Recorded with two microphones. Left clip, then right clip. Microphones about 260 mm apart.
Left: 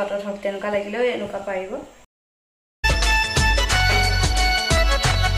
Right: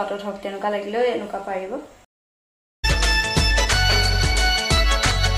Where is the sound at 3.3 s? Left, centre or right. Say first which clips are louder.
Even; centre.